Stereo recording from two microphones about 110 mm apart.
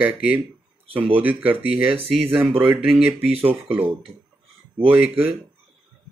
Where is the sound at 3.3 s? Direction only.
60° right (ahead or behind).